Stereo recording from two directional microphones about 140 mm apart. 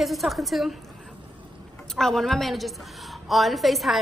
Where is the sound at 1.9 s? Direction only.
Centre (ahead or behind).